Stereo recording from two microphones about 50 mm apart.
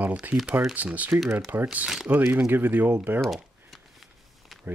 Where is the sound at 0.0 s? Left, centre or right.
Right.